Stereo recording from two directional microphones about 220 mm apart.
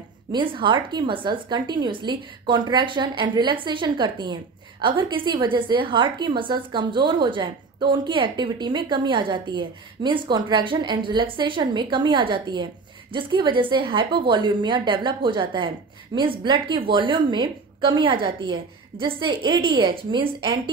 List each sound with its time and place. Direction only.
0.3 s a woman's voice: 20° right (ahead or behind)